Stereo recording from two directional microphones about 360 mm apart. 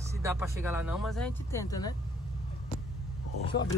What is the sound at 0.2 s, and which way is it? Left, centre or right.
Speech, centre.